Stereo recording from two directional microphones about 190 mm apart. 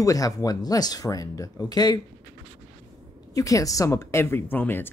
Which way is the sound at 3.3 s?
15° left (ahead or behind).